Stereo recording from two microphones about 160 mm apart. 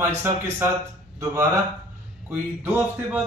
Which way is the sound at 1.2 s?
20° right (ahead or behind).